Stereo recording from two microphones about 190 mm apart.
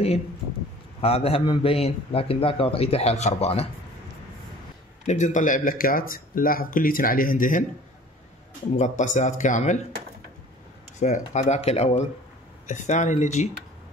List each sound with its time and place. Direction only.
1.0 s a man's voice: 30° left (ahead or behind)
5.0 s speech: 40° left (ahead or behind)
8.7 s a man's voice: 40° left (ahead or behind)
11.0 s a man's voice: 40° left (ahead or behind)